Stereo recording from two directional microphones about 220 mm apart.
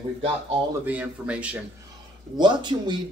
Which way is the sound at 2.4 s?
20° right (ahead or behind).